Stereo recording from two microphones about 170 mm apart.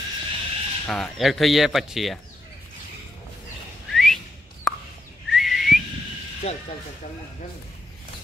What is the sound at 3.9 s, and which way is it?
Whistling, centre (ahead or behind).